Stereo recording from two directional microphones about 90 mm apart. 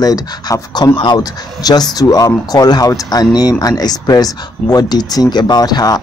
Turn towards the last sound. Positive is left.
turn(degrees=45)  # may be behind; listen again after turning